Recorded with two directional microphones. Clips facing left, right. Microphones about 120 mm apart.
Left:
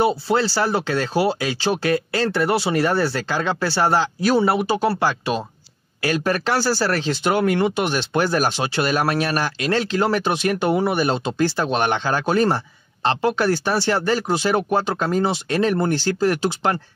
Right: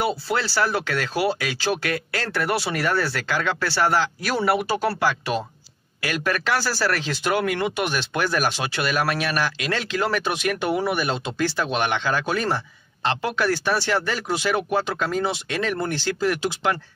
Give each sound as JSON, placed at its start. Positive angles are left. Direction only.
{"t": 0.0, "sound": "speech", "side_deg": 25}